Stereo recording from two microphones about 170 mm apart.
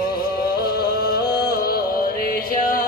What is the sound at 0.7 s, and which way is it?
Music, 65° left (ahead or behind).